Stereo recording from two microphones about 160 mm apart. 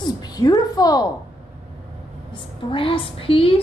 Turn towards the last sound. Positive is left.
turn(degrees=35)  # may be behind; listen again after turning